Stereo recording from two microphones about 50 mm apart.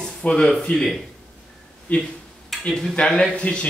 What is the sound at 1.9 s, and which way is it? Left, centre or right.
Speech, left.